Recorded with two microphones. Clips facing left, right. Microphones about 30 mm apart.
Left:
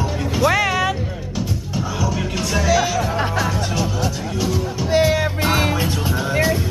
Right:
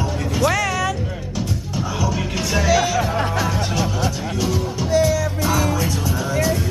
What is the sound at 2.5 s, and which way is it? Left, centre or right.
Music, centre.